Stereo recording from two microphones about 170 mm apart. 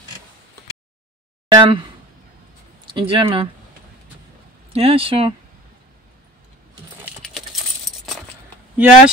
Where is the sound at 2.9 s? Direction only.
30° right (ahead or behind).